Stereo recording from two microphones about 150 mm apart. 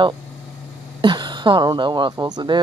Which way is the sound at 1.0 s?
30° right (ahead or behind).